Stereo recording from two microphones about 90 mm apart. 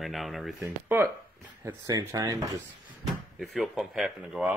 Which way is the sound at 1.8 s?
40° right (ahead or behind).